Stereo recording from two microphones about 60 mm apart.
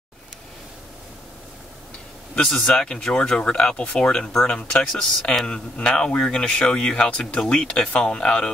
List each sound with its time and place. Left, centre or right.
2.3 s speech: centre